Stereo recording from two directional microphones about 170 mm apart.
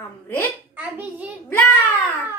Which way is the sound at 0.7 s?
10° right (ahead or behind).